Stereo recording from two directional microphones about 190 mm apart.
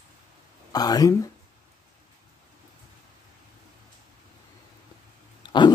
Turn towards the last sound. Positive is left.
turn(degrees=25)  # may be behind; listen again after turning